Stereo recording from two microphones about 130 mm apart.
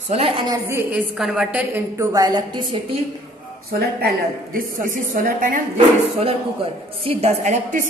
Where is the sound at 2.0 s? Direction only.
30° right (ahead or behind).